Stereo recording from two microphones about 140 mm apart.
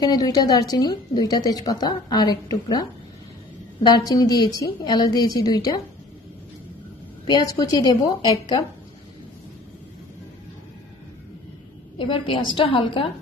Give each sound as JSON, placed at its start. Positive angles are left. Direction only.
{"t": 0.0, "sound": "a woman's voice", "side_deg": 30}
{"t": 7.2, "sound": "a woman's voice", "side_deg": 30}
{"t": 12.0, "sound": "a woman's voice", "side_deg": 35}